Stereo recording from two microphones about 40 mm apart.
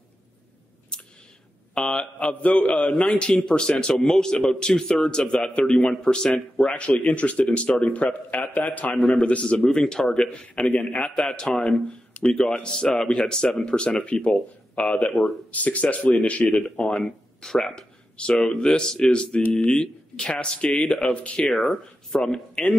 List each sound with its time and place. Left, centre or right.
1.8 s speech: centre
2.1 s speech: left
3.3 s a man's voice: centre; by 8.9 s left
8.9 s a man's voice: left
9.6 s a man's voice: centre
11.1 s speech: centre
12.1 s a sound: left
12.4 s a man's voice: centre
15.0 s speech: left
16.7 s a man's voice: centre
17.7 s a sound: left
18.3 s a man's voice: left
21.5 s speech: centre